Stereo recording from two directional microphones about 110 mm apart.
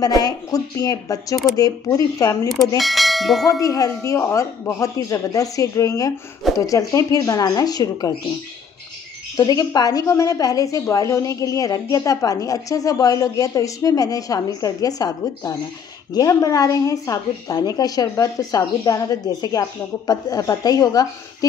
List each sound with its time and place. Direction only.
0.0 s a woman's voice: 35° left (ahead or behind)
2.8 s church bell: centre (ahead or behind)
3.4 s a woman's voice: 35° left (ahead or behind)
9.4 s a woman's voice: 35° left (ahead or behind)